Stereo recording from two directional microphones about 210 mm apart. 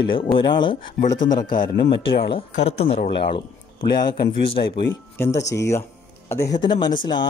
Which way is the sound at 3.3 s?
20° left (ahead or behind).